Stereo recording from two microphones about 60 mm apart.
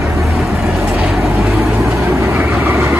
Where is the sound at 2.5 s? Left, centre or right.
Right.